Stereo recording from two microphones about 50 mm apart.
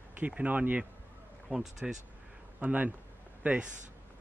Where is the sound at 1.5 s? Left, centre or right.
Centre.